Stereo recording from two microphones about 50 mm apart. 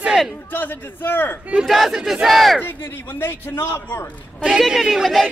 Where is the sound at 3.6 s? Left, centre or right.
Left.